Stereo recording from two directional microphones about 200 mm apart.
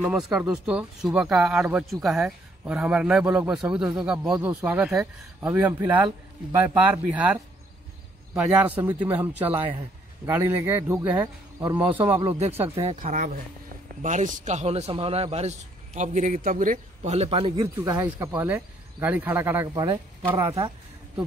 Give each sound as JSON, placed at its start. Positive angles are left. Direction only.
{"t": 0.0, "sound": "a man's voice", "side_deg": -5}
{"t": 8.4, "sound": "speech", "side_deg": -5}
{"t": 12.0, "sound": "a man's voice", "side_deg": -25}
{"t": 17.6, "sound": "speech", "side_deg": -10}